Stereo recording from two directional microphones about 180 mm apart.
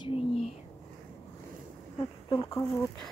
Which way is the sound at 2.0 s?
20° left (ahead or behind).